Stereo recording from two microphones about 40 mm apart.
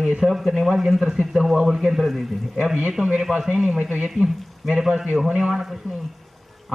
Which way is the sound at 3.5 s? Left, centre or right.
Right.